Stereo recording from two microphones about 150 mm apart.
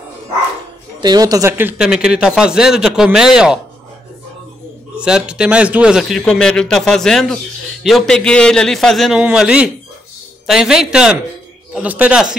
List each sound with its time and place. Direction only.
1.0 s a man's voice: 25° right (ahead or behind); by 3.5 s 5° right (ahead or behind)
4.9 s a man's voice: 5° right (ahead or behind)